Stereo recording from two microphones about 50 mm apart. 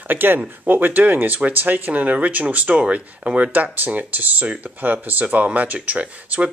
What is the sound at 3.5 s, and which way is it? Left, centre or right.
Speech, right.